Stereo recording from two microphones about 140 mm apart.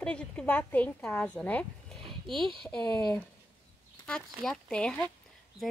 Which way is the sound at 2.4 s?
5° left (ahead or behind).